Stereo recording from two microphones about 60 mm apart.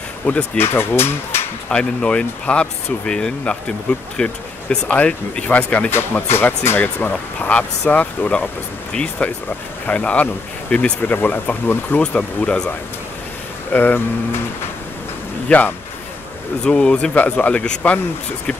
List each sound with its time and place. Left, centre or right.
0.2 s speech: left
0.6 s speech: left
1.7 s speech: centre
5.9 s speech: left
13.7 s speech: left
15.4 s speech: left
16.6 s speech: centre